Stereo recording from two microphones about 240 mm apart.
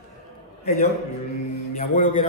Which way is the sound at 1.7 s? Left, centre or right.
Left.